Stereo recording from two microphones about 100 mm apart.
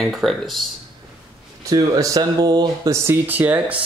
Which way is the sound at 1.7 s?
35° right (ahead or behind).